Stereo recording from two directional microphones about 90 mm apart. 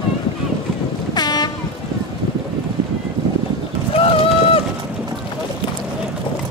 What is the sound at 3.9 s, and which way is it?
Run, 90° left.